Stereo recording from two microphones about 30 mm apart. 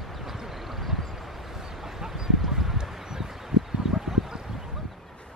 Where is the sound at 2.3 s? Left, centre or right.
Centre.